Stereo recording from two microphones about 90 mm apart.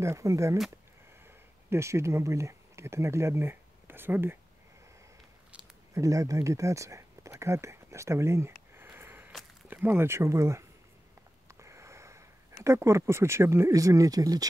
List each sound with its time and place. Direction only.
0.0 s speech: 35° right (ahead or behind)
5.9 s speech: 40° right (ahead or behind)